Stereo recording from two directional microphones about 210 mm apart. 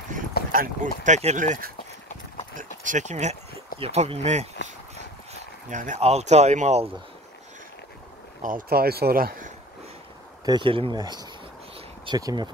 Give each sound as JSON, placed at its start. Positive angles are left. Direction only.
{"t": 0.5, "sound": "speech", "side_deg": -40}
{"t": 2.8, "sound": "speech", "side_deg": -35}
{"t": 8.4, "sound": "speech", "side_deg": -40}
{"t": 10.4, "sound": "speech", "side_deg": -20}